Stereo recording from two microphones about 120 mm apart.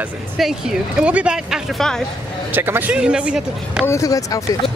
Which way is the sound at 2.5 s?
15° right (ahead or behind).